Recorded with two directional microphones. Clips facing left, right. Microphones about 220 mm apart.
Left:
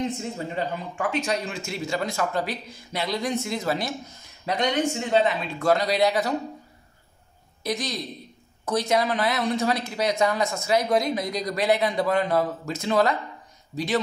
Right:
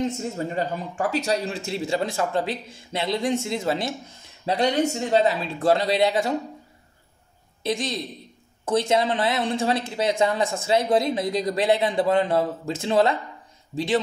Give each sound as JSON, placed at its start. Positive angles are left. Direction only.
{"t": 0.6, "sound": "speech", "side_deg": -40}
{"t": 7.6, "sound": "speech", "side_deg": -25}